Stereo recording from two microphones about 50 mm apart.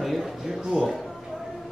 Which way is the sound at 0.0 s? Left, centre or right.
Centre.